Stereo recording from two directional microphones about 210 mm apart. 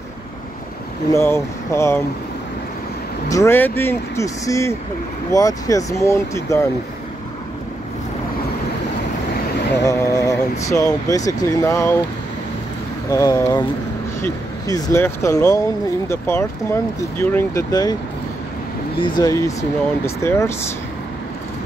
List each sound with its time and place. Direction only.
1.1 s speech: 15° left (ahead or behind)
3.3 s speech: 15° left (ahead or behind)
9.8 s speech: 15° left (ahead or behind)
13.1 s speech: 15° left (ahead or behind)
18.9 s speech: 20° left (ahead or behind)